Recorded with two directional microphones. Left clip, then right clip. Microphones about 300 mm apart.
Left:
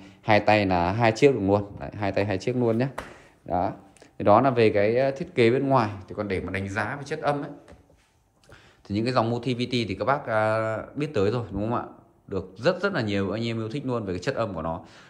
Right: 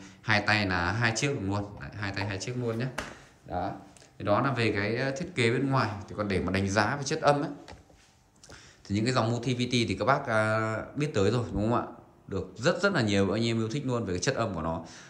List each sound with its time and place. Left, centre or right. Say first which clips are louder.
0.0 s speech: left 6 dB; centre
8.8 s speech: left 4 dB; centre